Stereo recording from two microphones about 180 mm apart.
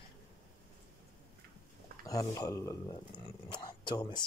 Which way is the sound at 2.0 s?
20° left (ahead or behind).